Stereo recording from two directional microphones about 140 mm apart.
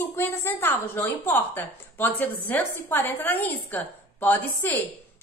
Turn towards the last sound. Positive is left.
turn(degrees=15)  # may be behind; listen again after turning